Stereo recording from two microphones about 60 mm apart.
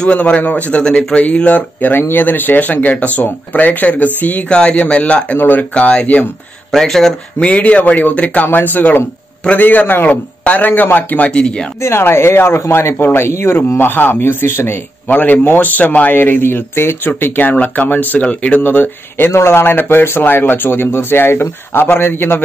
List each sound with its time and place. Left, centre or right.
0.0 s speech: left
6.7 s speech: centre
7.4 s speech: centre
11.8 s speech: left
16.2 s speech: left
18.6 s speech: left